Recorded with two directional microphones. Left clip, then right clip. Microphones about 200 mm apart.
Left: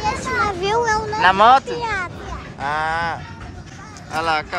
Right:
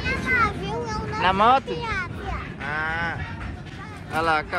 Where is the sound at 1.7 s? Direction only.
30° left (ahead or behind).